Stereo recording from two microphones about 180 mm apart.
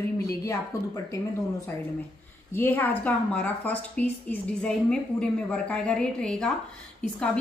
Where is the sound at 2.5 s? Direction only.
10° left (ahead or behind).